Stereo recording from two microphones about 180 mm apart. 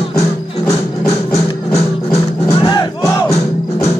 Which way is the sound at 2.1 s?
35° left (ahead or behind).